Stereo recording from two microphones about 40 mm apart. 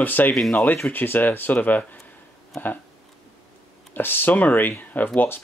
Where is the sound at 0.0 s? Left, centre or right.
Left.